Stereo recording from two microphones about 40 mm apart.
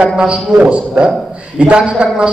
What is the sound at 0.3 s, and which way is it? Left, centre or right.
A man's voice, right.